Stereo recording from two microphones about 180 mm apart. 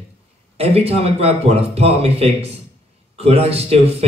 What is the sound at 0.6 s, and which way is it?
A man's voice, 35° right (ahead or behind).